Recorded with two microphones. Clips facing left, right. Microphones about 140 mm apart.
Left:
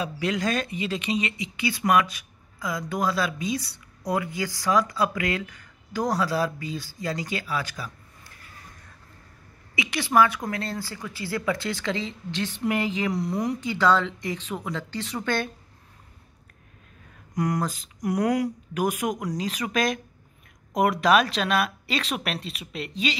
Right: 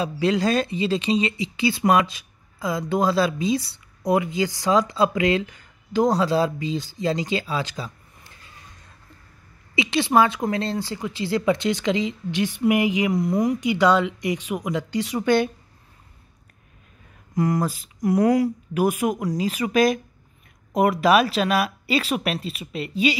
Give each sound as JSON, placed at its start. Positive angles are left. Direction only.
{"t": 0.0, "sound": "speech", "side_deg": -30}
{"t": 9.8, "sound": "speech", "side_deg": -25}
{"t": 17.4, "sound": "speech", "side_deg": -5}